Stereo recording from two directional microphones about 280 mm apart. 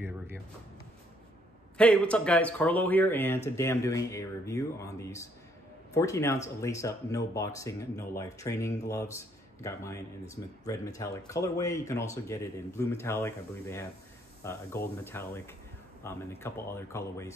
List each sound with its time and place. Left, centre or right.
1.8 s a man's voice: centre